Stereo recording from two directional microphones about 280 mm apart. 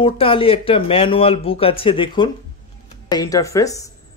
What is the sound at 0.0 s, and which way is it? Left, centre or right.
A man's voice, centre.